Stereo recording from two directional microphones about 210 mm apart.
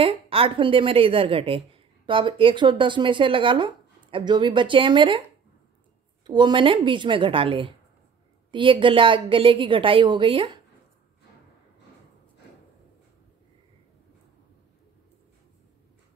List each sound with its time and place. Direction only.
0.0 s speech: 25° right (ahead or behind)
6.2 s speech: 20° right (ahead or behind)